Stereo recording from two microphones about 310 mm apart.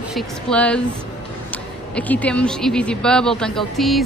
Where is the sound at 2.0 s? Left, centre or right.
Centre.